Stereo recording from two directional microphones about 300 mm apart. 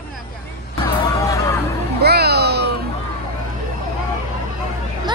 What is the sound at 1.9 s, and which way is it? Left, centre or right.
Music, right.